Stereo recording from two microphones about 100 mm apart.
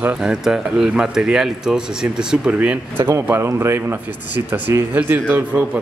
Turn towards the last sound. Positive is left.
turn(degrees=-15)  # may be behind; listen again after turning